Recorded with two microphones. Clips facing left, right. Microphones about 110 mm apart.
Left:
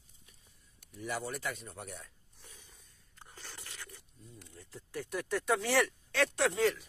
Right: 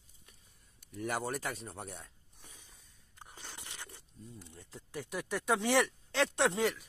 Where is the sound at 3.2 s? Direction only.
15° right (ahead or behind).